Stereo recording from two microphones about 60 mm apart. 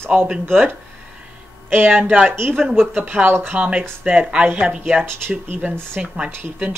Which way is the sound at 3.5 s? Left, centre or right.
Right.